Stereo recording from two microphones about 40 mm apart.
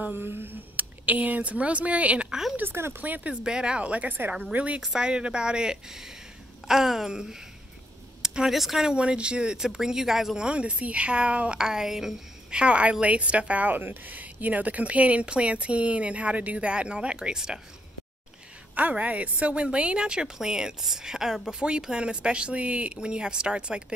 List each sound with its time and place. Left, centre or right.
0.1 s speech: right
2.2 s speech: centre
2.6 s speech: right
3.4 s speech: right
3.8 s speech: right
4.9 s speech: right; by 8.8 s centre
8.8 s speech: right
9.6 s speech: centre
10.3 s speech: right
11.6 s speech: centre
12.4 s speech: right
13.7 s speech: right; by 17.6 s centre
18.8 s speech: right